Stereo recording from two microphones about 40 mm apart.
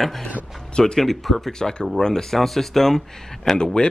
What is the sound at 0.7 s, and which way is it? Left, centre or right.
Speech, left.